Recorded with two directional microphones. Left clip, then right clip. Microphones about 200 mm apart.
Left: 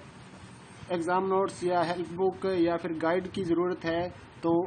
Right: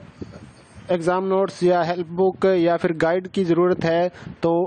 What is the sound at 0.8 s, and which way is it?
Speech, 50° right (ahead or behind).